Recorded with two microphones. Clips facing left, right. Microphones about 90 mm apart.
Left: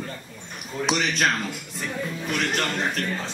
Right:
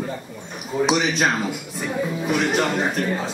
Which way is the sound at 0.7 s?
5° right (ahead or behind).